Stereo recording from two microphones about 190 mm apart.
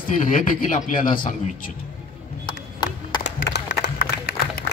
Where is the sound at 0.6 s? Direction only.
45° left (ahead or behind).